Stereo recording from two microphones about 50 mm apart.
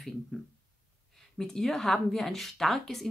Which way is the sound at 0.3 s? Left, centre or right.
Centre.